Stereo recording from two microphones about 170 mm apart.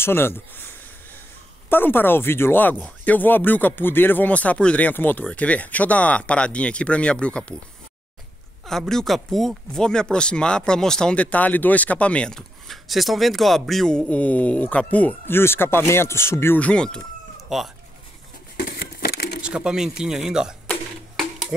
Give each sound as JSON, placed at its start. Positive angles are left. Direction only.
{"t": 0.0, "sound": "speech", "side_deg": 15}
{"t": 1.7, "sound": "speech", "side_deg": 10}
{"t": 8.6, "sound": "speech", "side_deg": 0}
{"t": 18.6, "sound": "a sound", "side_deg": 60}
{"t": 19.4, "sound": "speech", "side_deg": -5}